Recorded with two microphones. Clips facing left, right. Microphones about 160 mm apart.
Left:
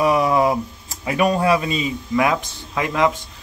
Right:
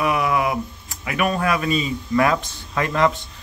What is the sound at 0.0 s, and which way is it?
Speech, 35° left (ahead or behind).